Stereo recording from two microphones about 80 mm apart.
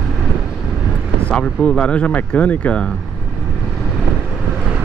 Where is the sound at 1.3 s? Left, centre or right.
Centre.